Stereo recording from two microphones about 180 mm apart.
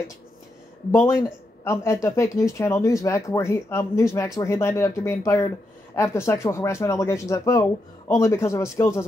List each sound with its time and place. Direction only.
0.9 s speech: 15° left (ahead or behind)